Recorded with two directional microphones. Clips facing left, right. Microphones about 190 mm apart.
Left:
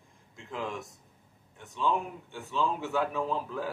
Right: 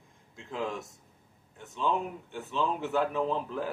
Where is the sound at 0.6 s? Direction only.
Centre (ahead or behind).